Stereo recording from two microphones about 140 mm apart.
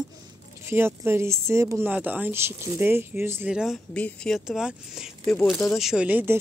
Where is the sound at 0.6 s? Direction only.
15° right (ahead or behind).